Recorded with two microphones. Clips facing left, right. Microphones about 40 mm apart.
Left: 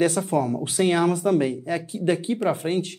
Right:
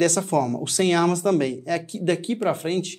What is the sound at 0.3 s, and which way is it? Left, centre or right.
Speech, centre.